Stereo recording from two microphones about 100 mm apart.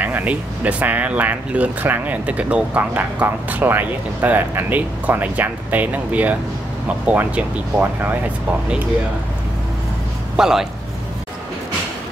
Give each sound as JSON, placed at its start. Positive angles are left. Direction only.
{"t": 0.0, "sound": "speech", "side_deg": -15}
{"t": 10.3, "sound": "a man's voice", "side_deg": -5}